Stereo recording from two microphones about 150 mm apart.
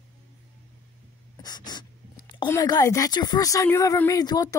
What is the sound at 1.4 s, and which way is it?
Speech, 30° left (ahead or behind).